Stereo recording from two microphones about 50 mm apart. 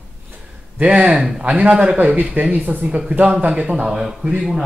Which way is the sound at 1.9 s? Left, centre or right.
Right.